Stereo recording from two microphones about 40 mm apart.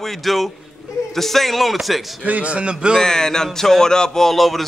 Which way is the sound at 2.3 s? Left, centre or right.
Right.